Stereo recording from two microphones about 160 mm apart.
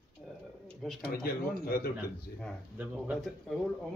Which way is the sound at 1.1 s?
70° left (ahead or behind).